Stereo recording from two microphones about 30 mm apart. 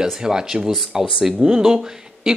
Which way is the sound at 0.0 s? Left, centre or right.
Right.